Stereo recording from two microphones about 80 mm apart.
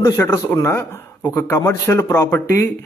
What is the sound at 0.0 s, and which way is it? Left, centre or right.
A man's voice, left.